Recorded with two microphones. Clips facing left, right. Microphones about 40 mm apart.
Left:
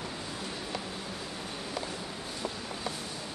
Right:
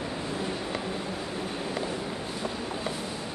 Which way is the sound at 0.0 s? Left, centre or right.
Centre.